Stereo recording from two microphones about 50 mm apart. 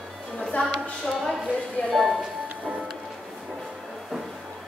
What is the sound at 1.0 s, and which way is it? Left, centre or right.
Speech, centre.